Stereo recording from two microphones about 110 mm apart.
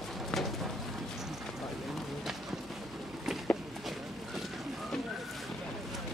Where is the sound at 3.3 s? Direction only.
5° right (ahead or behind).